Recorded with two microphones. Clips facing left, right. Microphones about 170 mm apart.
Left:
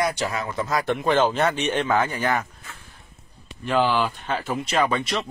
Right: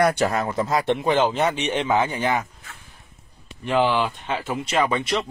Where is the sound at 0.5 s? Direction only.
30° right (ahead or behind).